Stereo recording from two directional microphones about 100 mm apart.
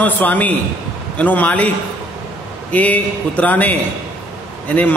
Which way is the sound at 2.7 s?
15° left (ahead or behind).